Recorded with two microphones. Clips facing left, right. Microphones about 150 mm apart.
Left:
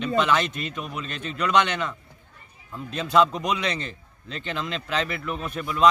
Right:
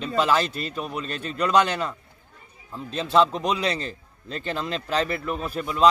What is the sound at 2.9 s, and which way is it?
A man's voice, 30° right (ahead or behind).